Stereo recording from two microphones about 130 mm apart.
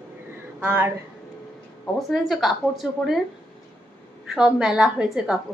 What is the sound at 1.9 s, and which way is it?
Speech, centre (ahead or behind).